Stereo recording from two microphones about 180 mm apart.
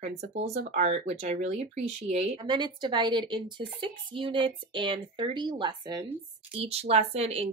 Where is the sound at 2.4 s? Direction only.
25° right (ahead or behind).